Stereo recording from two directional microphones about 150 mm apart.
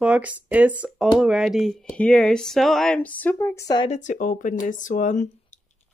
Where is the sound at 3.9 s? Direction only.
55° left (ahead or behind).